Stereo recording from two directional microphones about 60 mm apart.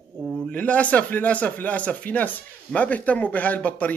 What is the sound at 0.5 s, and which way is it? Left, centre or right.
Speech, left.